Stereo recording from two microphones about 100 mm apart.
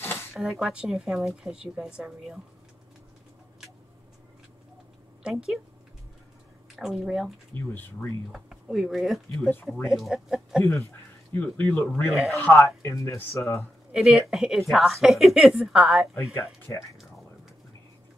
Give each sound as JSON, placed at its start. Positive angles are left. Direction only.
{"t": 0.0, "sound": "a sound", "side_deg": 25}
{"t": 0.3, "sound": "a woman's voice", "side_deg": -5}
{"t": 5.2, "sound": "speech", "side_deg": -5}
{"t": 6.8, "sound": "a woman's voice", "side_deg": -5}
{"t": 7.5, "sound": "speech", "side_deg": 20}
{"t": 8.3, "sound": "a woman's voice", "side_deg": -5}
{"t": 11.3, "sound": "speech", "side_deg": 15}
{"t": 12.1, "sound": "a woman's voice", "side_deg": 0}
{"t": 12.5, "sound": "speech", "side_deg": 30}
{"t": 13.6, "sound": "a woman's voice", "side_deg": 0}
{"t": 16.3, "sound": "speech", "side_deg": 25}